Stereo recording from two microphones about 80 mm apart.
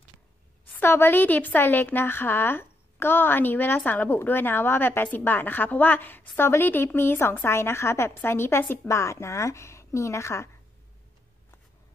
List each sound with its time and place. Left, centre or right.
0.7 s a woman's voice: left